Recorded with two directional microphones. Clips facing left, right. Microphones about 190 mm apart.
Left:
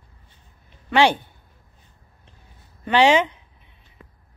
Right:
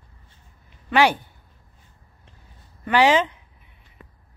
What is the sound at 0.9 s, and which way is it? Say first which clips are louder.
Speech: left 1 dB; 25° left (ahead or behind).